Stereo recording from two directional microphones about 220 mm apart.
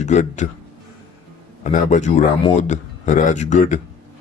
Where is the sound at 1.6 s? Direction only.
35° left (ahead or behind).